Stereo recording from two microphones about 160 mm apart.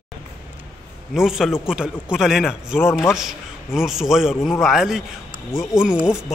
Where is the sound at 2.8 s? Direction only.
15° left (ahead or behind).